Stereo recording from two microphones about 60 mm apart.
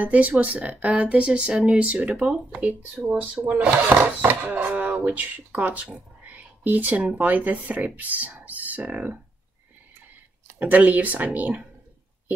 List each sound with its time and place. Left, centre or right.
0.0 s speech: right
10.6 s speech: right